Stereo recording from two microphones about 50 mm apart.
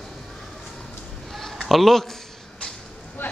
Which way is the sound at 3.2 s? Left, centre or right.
Left.